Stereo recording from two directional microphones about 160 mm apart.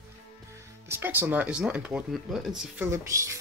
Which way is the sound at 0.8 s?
15° right (ahead or behind).